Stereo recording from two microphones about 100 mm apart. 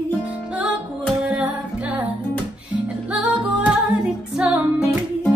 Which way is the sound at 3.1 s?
15° right (ahead or behind).